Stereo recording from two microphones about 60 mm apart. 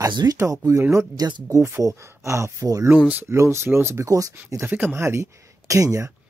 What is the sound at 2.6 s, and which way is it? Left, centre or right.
Speech, right.